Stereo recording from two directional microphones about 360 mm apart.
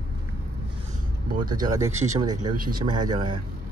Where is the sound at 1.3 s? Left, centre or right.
Right.